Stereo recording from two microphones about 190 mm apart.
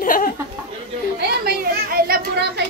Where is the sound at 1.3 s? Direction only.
50° right (ahead or behind).